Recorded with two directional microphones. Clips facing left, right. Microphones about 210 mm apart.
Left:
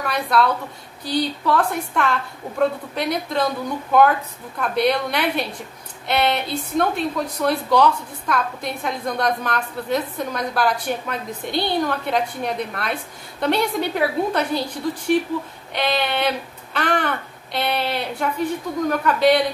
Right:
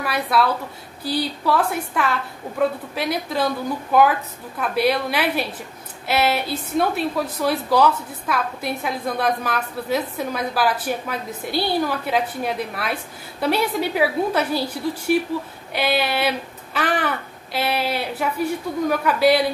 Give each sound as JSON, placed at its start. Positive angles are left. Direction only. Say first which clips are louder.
{"t": 0.0, "sound": "a woman's voice", "louder": "left 1 dB", "side_deg": -5}